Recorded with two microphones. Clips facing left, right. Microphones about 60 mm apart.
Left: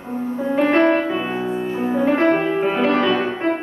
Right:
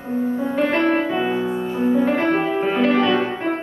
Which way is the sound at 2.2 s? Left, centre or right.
Centre.